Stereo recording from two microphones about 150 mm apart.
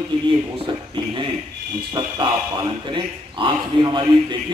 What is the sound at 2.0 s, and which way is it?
A man's voice, 25° right (ahead or behind).